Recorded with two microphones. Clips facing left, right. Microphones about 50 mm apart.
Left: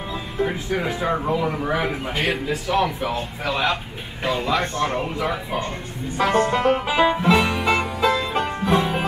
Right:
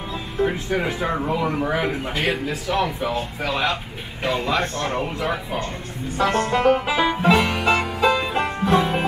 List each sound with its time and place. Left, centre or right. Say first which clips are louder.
0.4 s speech: right 2 dB; centre
4.3 s speech: even; centre
4.6 s speech: left 1 dB; centre
4.9 s speech: even; centre
6.2 s music: left 2 dB; left
6.5 s speech: right 1 dB; centre
7.2 s music: right 1 dB; centre
7.4 s music: right 1 dB; centre